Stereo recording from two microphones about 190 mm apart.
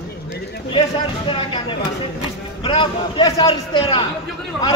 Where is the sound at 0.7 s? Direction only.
25° left (ahead or behind).